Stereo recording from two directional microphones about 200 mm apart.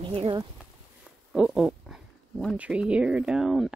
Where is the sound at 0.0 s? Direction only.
25° right (ahead or behind).